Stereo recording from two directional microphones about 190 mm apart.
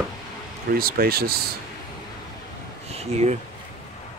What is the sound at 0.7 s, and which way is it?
Speech, 50° right (ahead or behind).